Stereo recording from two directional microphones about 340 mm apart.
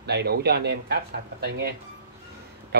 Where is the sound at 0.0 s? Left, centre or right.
Right.